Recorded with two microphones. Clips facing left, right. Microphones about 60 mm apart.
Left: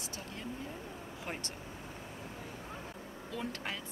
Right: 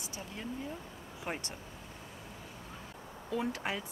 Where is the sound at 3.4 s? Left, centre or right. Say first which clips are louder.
Right 4 dB; centre.